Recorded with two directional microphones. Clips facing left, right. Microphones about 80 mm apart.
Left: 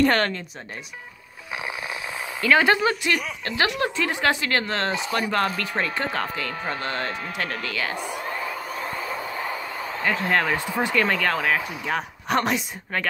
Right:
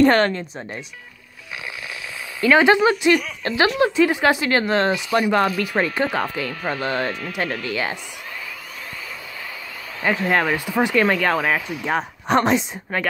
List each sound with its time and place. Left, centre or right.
0.0 s speech: right
2.4 s speech: right
3.8 s speech: centre
9.1 s a sound: left
10.0 s speech: centre